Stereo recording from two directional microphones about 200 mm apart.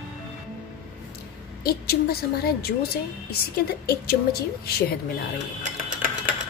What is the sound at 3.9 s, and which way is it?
Speech, 50° left (ahead or behind).